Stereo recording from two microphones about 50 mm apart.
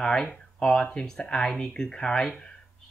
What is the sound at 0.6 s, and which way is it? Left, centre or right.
Speech, centre.